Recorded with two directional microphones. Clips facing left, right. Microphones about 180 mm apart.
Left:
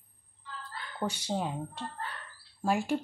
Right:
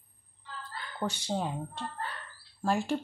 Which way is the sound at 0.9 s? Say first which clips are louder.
Even; 10° left (ahead or behind).